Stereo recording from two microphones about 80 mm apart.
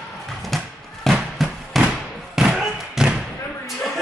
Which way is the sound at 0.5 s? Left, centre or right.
Centre.